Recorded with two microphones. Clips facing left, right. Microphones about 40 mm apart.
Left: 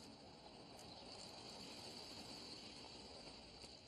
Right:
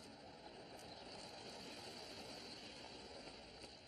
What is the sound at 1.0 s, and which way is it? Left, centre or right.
Vehicle, centre.